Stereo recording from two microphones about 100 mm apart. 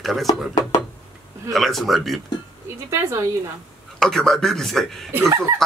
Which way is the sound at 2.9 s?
30° right (ahead or behind).